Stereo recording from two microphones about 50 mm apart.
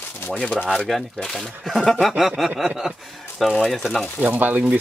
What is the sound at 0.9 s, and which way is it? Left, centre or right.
Speech, centre.